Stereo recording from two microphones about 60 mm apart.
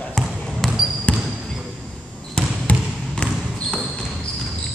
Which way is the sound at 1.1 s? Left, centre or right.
Left.